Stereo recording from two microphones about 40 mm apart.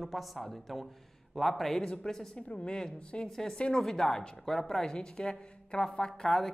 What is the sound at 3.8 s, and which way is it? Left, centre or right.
A woman's voice, centre.